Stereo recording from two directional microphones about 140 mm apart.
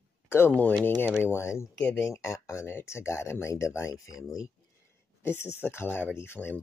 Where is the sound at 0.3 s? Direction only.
15° left (ahead or behind).